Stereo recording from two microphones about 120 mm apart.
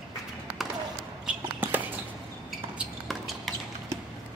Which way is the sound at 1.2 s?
15° right (ahead or behind).